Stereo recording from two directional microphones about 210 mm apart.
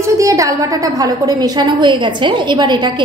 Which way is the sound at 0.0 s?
15° right (ahead or behind).